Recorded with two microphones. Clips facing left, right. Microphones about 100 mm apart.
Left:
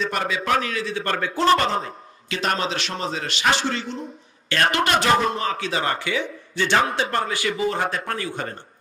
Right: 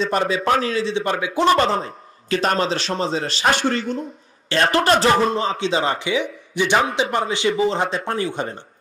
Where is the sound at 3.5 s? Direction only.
50° right (ahead or behind).